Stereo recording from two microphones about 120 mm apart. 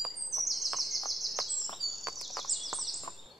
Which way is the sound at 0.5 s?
Centre (ahead or behind).